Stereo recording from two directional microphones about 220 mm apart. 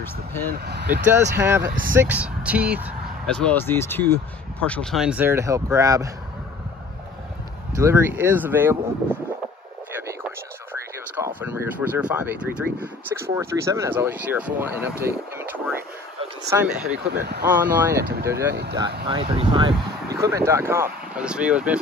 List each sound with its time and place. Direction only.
0.0 s speech: 10° left (ahead or behind)
0.5 s speech: 45° right (ahead or behind)
1.3 s speech: 10° right (ahead or behind)
3.3 s speech: 5° left (ahead or behind); by 6.0 s 15° right (ahead or behind)
7.7 s speech: 10° right (ahead or behind)
10.0 s a sound: 10° right (ahead or behind)
12.8 s speech: 10° right (ahead or behind)
15.0 s a sound: 10° right (ahead or behind)
16.4 s speech: 10° right (ahead or behind)
17.0 s speech: 45° right (ahead or behind)
17.5 s speech: 10° right (ahead or behind)
18.5 s speech: 50° right (ahead or behind)
19.0 s speech: 25° right (ahead or behind); by 21.7 s 5° right (ahead or behind)